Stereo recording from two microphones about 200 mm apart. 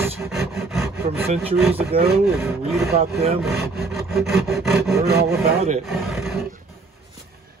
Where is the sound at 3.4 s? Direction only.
Centre (ahead or behind).